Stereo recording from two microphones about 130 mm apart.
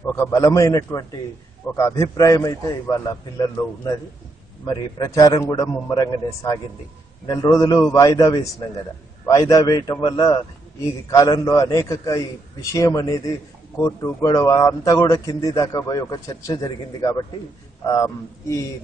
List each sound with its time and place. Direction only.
0.2 s a man's voice: 25° left (ahead or behind)